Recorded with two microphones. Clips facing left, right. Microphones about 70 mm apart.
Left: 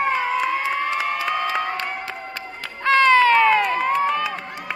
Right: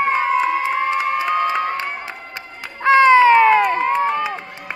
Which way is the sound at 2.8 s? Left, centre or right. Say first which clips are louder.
Right 4 dB; right.